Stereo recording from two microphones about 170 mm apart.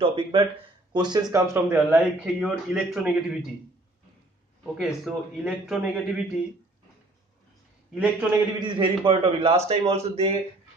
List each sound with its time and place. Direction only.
0.0 s a man's voice: 30° right (ahead or behind); by 2.0 s 15° right (ahead or behind)
2.0 s a man's voice: 5° right (ahead or behind)
4.7 s a man's voice: 5° right (ahead or behind)
7.9 s a man's voice: 10° right (ahead or behind)
8.5 s a man's voice: 25° right (ahead or behind)